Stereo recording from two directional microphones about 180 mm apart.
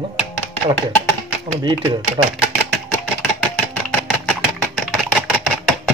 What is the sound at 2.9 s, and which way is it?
Chopping, 10° left (ahead or behind).